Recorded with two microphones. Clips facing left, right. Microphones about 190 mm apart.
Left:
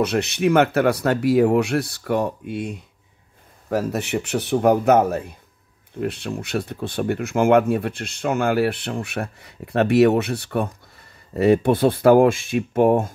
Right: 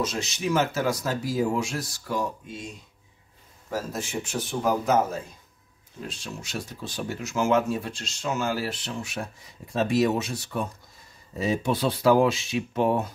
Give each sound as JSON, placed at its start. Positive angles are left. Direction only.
{"t": 0.0, "sound": "speech", "side_deg": 60}